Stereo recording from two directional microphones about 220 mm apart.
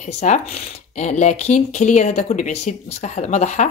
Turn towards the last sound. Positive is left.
turn(degrees=30)  # may be behind; listen again after turning